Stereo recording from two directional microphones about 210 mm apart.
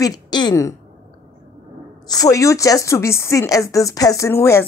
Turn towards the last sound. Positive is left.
turn(degrees=10)  # may be behind; listen again after turning